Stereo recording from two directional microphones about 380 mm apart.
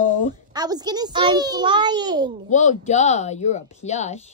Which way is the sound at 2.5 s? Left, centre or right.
Centre.